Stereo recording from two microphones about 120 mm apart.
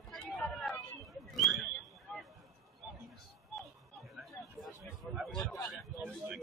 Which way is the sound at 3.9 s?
Centre (ahead or behind).